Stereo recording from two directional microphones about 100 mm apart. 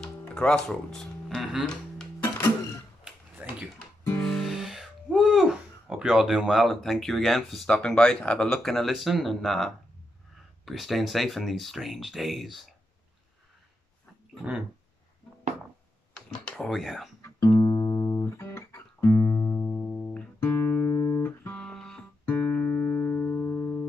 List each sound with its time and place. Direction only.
0.3 s speech: 10° left (ahead or behind)
3.3 s a sound: 10° right (ahead or behind)
4.2 s music: centre (ahead or behind)
5.9 s speech: 10° right (ahead or behind)
16.2 s speech: 10° left (ahead or behind)
17.2 s music: 25° left (ahead or behind)
17.6 s music: 40° left (ahead or behind)
19.6 s music: 10° left (ahead or behind)
20.3 s music: 25° left (ahead or behind)
21.5 s music: 10° left (ahead or behind)
22.2 s music: 20° left (ahead or behind)